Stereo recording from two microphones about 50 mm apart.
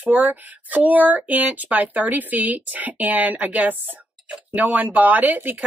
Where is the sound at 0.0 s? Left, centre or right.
Right.